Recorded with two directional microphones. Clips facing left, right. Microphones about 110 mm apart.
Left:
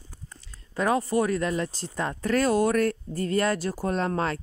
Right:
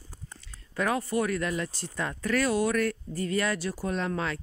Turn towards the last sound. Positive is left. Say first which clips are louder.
# left 4 dB
turn(degrees=40)  # may be behind; listen again after turning